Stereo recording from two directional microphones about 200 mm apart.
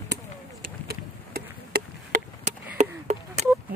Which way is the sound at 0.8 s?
50° right (ahead or behind).